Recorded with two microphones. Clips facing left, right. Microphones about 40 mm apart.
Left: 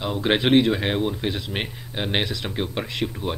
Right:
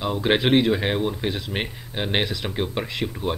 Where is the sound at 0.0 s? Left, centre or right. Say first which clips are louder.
Right 1 dB; centre.